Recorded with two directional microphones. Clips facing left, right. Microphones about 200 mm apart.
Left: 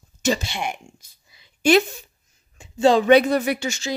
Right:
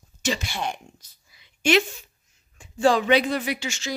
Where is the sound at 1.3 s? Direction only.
35° left (ahead or behind).